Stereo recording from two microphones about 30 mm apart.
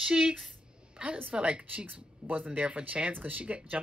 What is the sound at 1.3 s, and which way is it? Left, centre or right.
Speech, right.